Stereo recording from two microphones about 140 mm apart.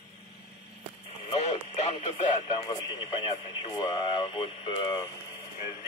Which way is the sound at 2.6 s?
35° left (ahead or behind).